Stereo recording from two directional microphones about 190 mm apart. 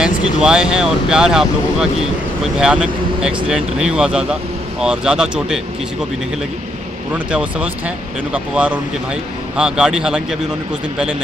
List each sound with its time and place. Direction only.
0.0 s speech: 5° right (ahead or behind)
7.2 s speech: 5° right (ahead or behind)